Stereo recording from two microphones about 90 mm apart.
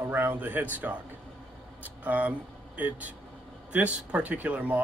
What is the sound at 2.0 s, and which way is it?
Speech, 20° right (ahead or behind).